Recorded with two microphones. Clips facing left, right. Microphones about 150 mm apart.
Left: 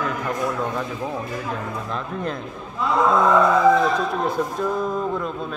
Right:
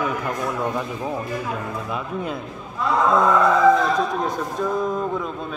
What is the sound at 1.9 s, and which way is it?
Speech, 5° right (ahead or behind).